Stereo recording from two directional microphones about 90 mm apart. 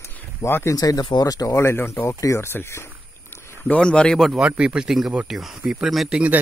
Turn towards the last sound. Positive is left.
turn(degrees=-10)  # may be behind; listen again after turning